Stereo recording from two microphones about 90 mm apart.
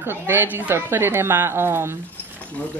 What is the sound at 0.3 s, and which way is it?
A woman's voice, 25° right (ahead or behind).